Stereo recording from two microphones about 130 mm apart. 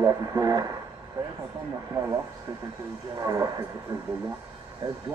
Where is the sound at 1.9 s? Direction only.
20° right (ahead or behind).